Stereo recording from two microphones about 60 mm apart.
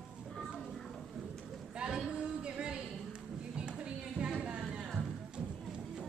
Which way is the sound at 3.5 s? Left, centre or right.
Centre.